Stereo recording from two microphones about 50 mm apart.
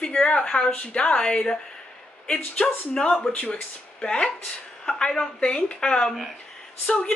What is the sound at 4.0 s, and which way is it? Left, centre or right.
A woman's voice, centre.